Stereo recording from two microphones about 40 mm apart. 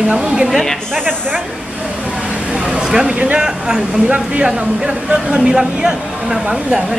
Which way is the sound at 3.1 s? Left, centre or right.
Right.